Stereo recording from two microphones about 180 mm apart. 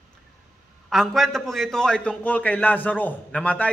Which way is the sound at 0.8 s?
Centre (ahead or behind).